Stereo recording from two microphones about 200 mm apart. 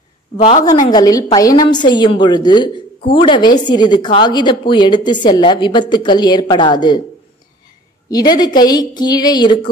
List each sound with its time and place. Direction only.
0.4 s a woman's voice: 35° left (ahead or behind)
0.7 s a woman's voice: 20° left (ahead or behind)
8.1 s a woman's voice: 20° left (ahead or behind)